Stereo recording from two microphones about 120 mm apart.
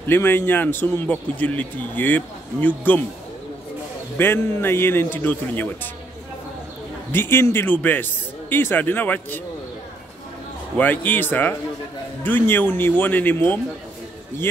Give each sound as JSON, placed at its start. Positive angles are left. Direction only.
{"t": 0.0, "sound": "a man's voice", "side_deg": 20}
{"t": 4.2, "sound": "a man's voice", "side_deg": 20}
{"t": 7.1, "sound": "a man's voice", "side_deg": 20}
{"t": 10.8, "sound": "a man's voice", "side_deg": 15}